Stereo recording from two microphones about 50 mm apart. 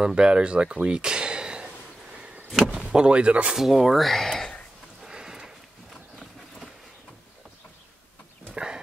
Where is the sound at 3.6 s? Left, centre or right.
Centre.